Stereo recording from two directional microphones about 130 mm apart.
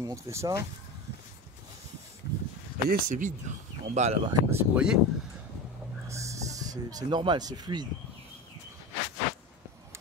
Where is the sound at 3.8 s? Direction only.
60° right (ahead or behind).